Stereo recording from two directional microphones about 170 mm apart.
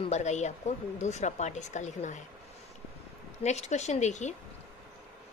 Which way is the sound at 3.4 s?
40° left (ahead or behind).